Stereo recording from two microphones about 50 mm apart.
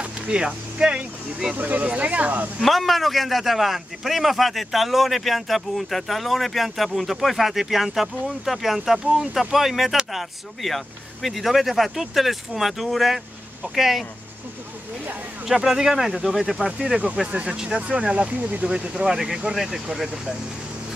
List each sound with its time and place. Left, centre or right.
0.0 s speech: right
1.6 s speech: right
2.6 s a man's voice: centre
15.4 s speech: centre
17.3 s speech: right
19.0 s speech: centre